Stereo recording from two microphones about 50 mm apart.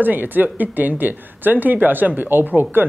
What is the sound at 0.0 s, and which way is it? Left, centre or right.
Speech, right.